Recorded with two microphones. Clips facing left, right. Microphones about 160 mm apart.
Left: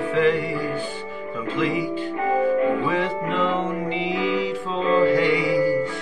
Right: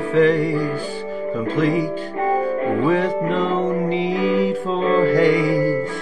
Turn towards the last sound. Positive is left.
turn(degrees=-45)  # may be behind; listen again after turning